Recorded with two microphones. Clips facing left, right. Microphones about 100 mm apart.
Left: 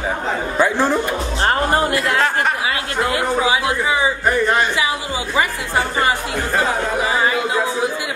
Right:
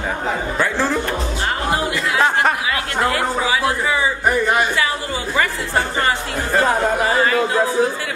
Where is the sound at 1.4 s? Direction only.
50° left (ahead or behind).